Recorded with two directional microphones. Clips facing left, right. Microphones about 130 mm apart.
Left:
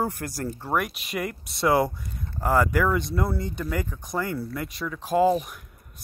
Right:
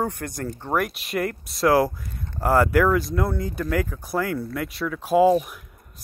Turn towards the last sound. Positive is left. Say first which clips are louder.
# right 4 dB
turn(degrees=0)  # may be behind; listen again after turning